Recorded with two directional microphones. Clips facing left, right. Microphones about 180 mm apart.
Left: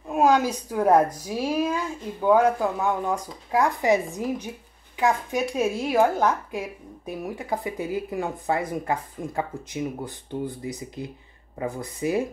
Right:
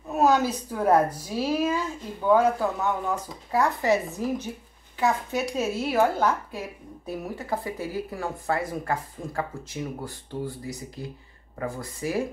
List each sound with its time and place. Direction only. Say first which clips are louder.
0.1 s a woman's voice: left 1 dB; 10° left (ahead or behind)